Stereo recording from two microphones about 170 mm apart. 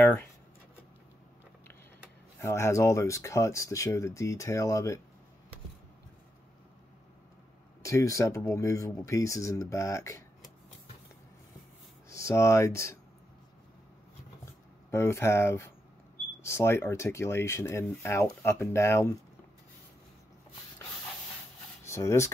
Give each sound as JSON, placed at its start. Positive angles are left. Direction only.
{"t": 2.4, "sound": "speech", "side_deg": 15}
{"t": 7.8, "sound": "speech", "side_deg": 20}
{"t": 12.1, "sound": "speech", "side_deg": 15}
{"t": 14.4, "sound": "a sound", "side_deg": 15}
{"t": 16.4, "sound": "speech", "side_deg": 15}
{"t": 21.8, "sound": "speech", "side_deg": 15}